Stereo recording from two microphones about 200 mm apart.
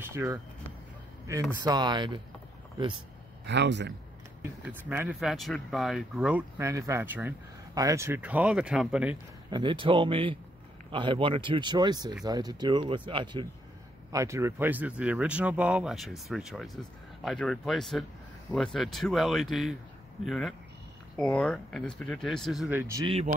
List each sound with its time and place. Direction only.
0.0 s a sound: 15° right (ahead or behind)
1.6 s speech: 20° right (ahead or behind)
3.4 s speech: 60° right (ahead or behind)
4.4 s speech: 10° right (ahead or behind)
9.5 s speech: 25° right (ahead or behind)
23.0 s speech: 30° right (ahead or behind)